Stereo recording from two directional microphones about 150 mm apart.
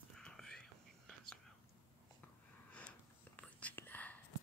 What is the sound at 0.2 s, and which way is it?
Whispering, 5° left (ahead or behind).